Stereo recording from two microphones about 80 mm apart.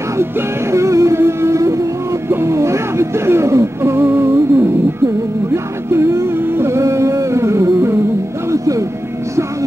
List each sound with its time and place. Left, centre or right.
0.2 s music: right